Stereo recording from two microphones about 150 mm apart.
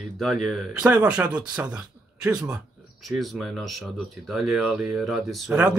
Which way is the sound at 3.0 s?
Centre (ahead or behind).